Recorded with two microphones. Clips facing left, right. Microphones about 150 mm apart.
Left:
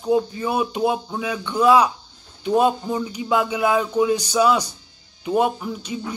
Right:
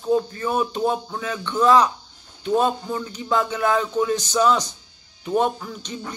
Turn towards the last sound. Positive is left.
turn(degrees=10)  # may be behind; listen again after turning